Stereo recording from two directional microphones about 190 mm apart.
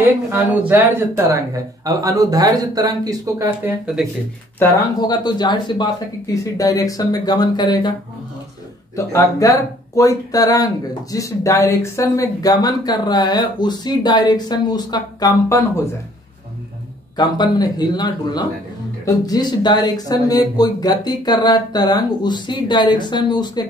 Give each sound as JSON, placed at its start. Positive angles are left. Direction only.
{"t": 0.0, "sound": "speech", "side_deg": -10}
{"t": 3.8, "sound": "speech", "side_deg": 0}
{"t": 4.6, "sound": "speech", "side_deg": 10}
{"t": 5.0, "sound": "speech", "side_deg": 20}
{"t": 8.9, "sound": "speech", "side_deg": 15}
{"t": 17.2, "sound": "speech", "side_deg": 20}